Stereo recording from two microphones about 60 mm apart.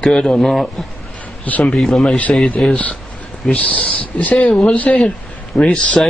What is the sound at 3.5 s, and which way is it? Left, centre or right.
Speech, left.